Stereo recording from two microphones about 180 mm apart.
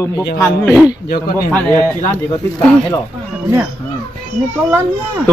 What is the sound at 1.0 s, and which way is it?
Speech, 60° left (ahead or behind).